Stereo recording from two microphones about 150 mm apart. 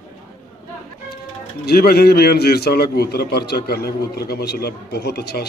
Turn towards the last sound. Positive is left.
turn(degrees=90)